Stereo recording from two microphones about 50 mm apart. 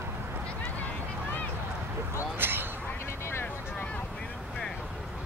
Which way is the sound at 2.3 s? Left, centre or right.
Right.